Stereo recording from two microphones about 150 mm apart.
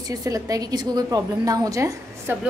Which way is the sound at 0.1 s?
25° right (ahead or behind).